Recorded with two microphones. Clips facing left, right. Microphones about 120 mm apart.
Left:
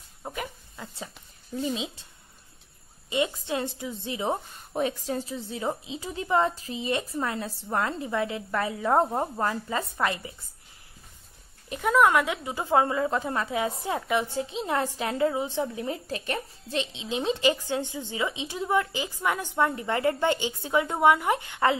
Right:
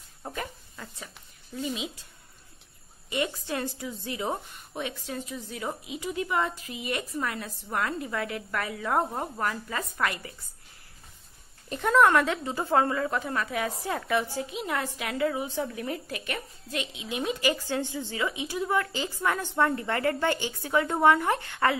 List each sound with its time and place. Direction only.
0.2 s a sound: 15° left (ahead or behind)
1.6 s a woman's voice: 30° left (ahead or behind)
3.1 s a woman's voice: 20° left (ahead or behind)
4.7 s a woman's voice: 35° left (ahead or behind)
11.7 s a woman's voice: 5° left (ahead or behind)